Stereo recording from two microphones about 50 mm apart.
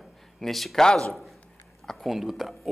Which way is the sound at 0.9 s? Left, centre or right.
Centre.